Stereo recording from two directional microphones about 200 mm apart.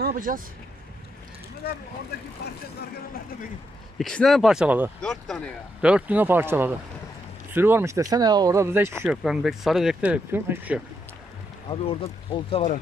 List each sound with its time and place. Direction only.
0.0 s speech: 45° right (ahead or behind)
4.0 s speech: centre (ahead or behind)
5.0 s speech: 5° left (ahead or behind)
11.7 s speech: 30° left (ahead or behind)